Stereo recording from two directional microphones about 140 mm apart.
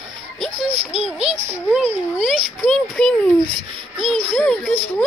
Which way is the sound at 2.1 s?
Centre (ahead or behind).